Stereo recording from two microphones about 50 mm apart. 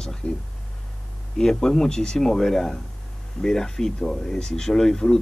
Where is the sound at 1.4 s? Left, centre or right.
Centre.